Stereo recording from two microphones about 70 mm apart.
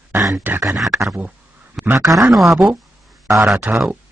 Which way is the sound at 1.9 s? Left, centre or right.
Right.